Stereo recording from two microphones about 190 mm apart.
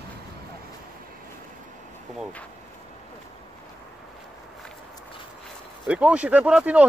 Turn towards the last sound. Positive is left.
turn(degrees=-5)  # may be behind; listen again after turning